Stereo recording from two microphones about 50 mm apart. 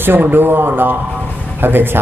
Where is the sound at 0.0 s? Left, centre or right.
Right.